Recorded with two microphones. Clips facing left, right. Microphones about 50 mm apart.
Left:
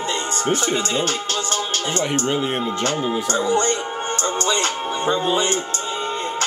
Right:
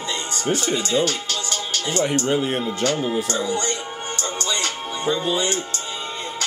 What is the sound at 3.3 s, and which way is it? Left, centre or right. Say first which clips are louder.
Music: left 5 dB; left.